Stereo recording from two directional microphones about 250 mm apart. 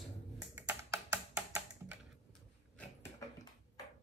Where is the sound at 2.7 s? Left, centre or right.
Centre.